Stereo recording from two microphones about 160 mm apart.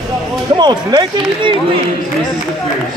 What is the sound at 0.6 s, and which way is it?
Speech, 25° right (ahead or behind).